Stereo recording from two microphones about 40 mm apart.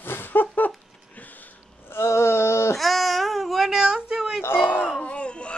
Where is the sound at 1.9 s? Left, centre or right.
Left.